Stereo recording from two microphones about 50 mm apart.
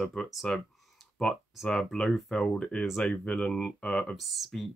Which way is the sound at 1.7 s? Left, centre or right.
Centre.